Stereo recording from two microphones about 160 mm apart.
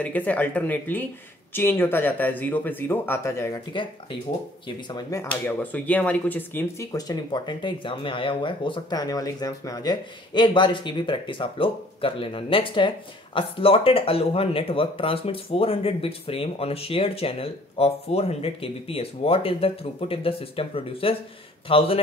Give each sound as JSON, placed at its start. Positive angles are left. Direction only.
{"t": 0.0, "sound": "speech", "side_deg": 10}
{"t": 3.8, "sound": "speech", "side_deg": 30}